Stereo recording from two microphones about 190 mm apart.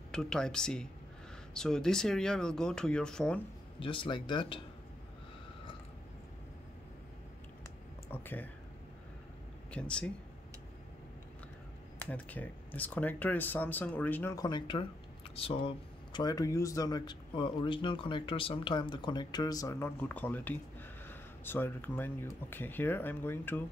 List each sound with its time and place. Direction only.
0.1 s speech: 5° left (ahead or behind)
3.8 s speech: 25° left (ahead or behind)
8.1 s speech: 10° left (ahead or behind)
9.7 s speech: 5° left (ahead or behind)
12.0 s speech: 10° left (ahead or behind)